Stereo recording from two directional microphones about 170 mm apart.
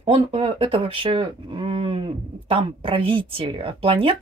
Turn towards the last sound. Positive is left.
turn(degrees=-30)  # may be behind; listen again after turning